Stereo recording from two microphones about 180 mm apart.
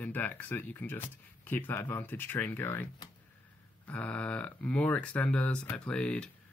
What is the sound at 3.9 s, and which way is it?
Speech, 10° left (ahead or behind).